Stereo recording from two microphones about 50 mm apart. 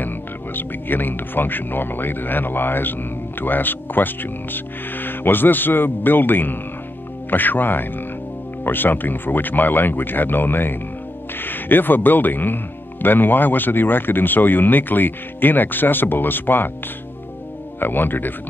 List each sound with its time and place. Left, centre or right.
0.6 s speech: left
17.7 s speech: left